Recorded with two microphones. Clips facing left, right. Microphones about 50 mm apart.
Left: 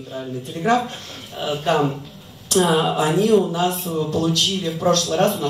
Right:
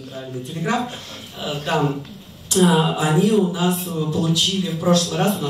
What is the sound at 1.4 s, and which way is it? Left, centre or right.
A man's voice, centre.